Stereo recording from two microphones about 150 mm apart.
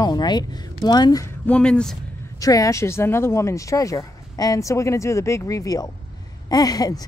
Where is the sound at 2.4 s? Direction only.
20° left (ahead or behind).